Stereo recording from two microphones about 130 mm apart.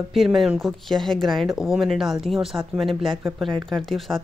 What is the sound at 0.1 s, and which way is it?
Speech, centre (ahead or behind).